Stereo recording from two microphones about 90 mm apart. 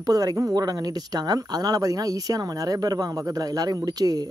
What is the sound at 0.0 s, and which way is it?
Speech, 45° right (ahead or behind).